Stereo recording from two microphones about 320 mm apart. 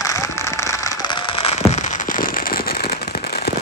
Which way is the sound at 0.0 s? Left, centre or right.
Centre.